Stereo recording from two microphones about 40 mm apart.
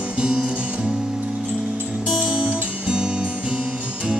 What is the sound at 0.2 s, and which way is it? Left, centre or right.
Music, right.